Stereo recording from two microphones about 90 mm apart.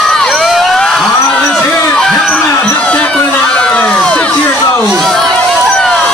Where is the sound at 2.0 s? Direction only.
5° left (ahead or behind).